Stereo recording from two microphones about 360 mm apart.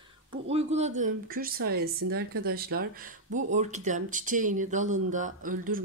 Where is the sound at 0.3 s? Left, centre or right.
Centre.